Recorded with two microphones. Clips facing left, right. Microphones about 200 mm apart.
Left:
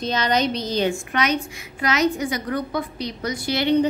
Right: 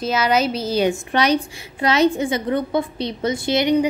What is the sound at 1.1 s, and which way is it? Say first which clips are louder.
A woman's voice: right 4 dB; 35° right (ahead or behind).